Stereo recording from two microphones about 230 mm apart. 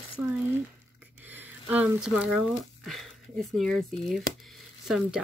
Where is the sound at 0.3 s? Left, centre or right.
Centre.